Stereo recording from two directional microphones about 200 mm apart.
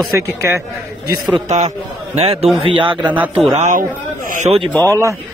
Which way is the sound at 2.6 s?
25° right (ahead or behind).